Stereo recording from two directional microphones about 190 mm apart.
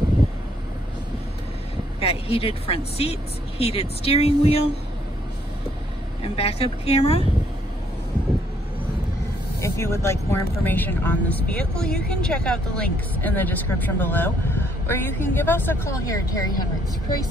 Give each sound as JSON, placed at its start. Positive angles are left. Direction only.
{"t": 2.0, "sound": "speech", "side_deg": 30}
{"t": 6.2, "sound": "speech", "side_deg": 30}
{"t": 9.6, "sound": "speech", "side_deg": 15}